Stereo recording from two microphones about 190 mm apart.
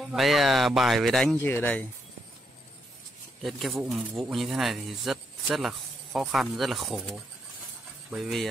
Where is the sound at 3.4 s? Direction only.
Centre (ahead or behind).